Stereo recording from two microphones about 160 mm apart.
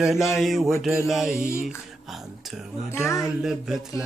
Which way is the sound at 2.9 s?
15° left (ahead or behind).